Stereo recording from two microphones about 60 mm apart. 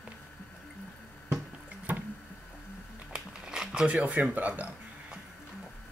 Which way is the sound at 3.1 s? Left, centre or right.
Centre.